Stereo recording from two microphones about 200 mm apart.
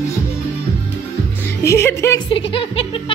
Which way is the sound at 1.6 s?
15° left (ahead or behind).